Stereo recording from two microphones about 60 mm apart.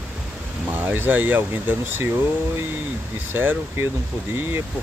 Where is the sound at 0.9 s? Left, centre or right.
Right.